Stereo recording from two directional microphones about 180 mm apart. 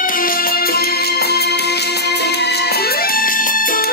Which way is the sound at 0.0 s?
50° left (ahead or behind).